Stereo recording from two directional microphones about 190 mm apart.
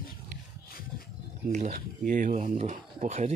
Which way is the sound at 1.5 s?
40° right (ahead or behind).